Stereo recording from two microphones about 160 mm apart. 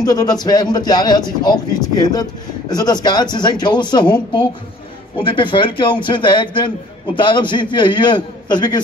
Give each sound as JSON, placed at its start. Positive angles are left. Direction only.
{"t": 0.0, "sound": "a man's voice", "side_deg": 25}